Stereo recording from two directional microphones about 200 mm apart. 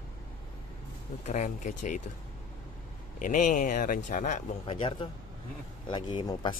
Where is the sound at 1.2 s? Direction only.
35° left (ahead or behind).